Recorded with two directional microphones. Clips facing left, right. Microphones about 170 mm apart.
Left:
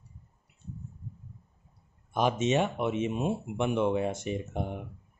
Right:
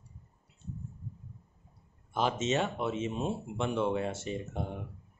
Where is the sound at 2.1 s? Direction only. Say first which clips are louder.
Left 4 dB; 15° left (ahead or behind).